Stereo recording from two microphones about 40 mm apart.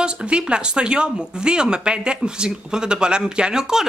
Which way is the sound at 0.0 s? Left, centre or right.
Right.